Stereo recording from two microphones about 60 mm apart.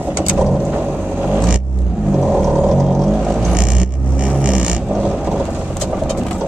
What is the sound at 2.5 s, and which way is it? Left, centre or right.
Vehicle, centre.